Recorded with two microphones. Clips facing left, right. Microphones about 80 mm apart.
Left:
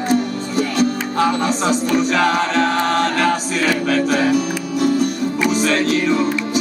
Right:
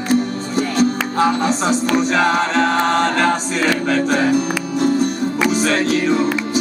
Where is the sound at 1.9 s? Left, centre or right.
Right.